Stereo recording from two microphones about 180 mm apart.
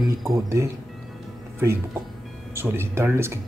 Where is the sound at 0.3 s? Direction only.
15° right (ahead or behind).